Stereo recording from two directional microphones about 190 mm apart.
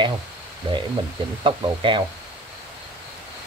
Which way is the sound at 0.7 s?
25° right (ahead or behind).